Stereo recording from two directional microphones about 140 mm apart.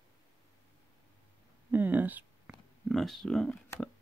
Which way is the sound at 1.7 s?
10° right (ahead or behind).